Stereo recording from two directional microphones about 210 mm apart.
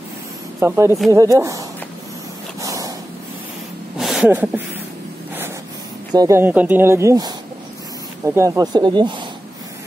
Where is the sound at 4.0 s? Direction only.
Centre (ahead or behind).